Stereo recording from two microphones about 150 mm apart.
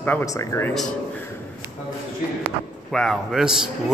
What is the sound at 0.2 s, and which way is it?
Speech, 20° left (ahead or behind).